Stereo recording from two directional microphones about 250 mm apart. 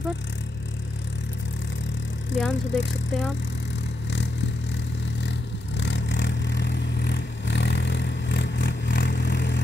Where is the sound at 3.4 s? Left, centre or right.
Left.